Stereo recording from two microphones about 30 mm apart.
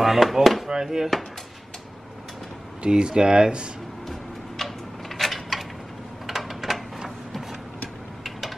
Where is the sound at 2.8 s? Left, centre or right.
Right.